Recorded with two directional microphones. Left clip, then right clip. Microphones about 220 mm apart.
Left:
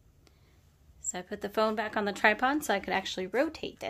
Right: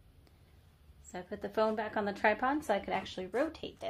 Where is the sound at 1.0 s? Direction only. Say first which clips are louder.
Left 4 dB; 35° left (ahead or behind); by 3.8 s 55° left (ahead or behind).